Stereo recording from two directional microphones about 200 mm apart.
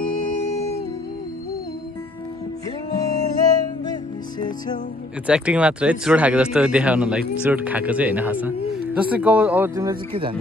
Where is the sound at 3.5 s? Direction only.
20° left (ahead or behind).